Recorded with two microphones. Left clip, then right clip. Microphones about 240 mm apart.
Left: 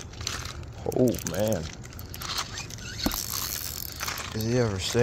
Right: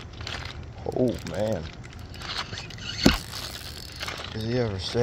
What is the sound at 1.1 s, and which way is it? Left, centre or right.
Speech, centre.